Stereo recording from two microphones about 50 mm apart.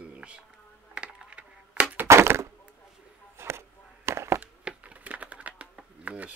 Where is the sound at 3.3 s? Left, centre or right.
Right.